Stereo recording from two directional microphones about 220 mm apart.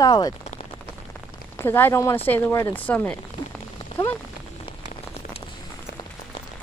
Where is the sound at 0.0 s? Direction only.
20° left (ahead or behind).